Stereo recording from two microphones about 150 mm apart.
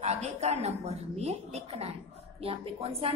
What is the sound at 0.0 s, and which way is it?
A woman's voice, 45° right (ahead or behind).